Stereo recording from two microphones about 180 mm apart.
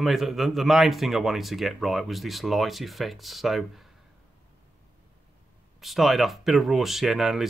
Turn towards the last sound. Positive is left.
turn(degrees=0)  # may be behind; listen again after turning